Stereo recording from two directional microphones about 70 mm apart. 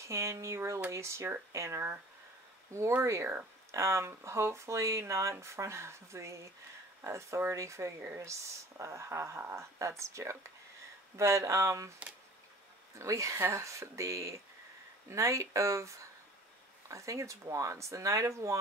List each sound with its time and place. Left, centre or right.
0.0 s speech: right
13.0 s speech: right